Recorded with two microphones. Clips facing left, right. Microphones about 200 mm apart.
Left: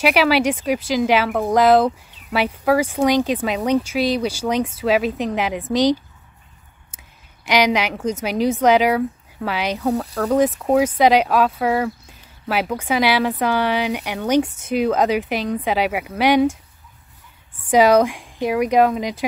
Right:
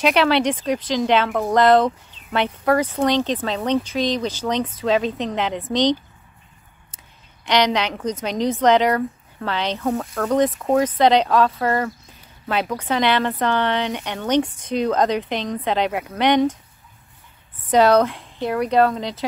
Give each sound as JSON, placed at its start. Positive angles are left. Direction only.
{"t": 0.0, "sound": "speech", "side_deg": 5}
{"t": 7.4, "sound": "speech", "side_deg": 10}
{"t": 17.6, "sound": "speech", "side_deg": 10}